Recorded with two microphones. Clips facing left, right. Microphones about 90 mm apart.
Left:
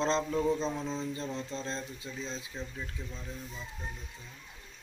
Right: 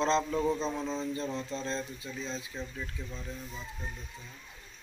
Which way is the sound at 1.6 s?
30° left (ahead or behind).